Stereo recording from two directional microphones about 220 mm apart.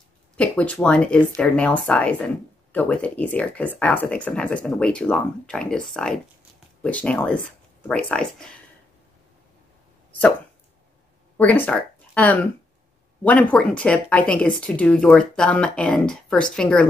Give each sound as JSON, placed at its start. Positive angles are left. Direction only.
{"t": 0.4, "sound": "speech", "side_deg": 5}
{"t": 11.3, "sound": "speech", "side_deg": 5}